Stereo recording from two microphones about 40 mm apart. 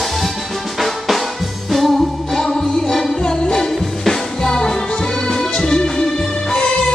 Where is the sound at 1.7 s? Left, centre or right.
Centre.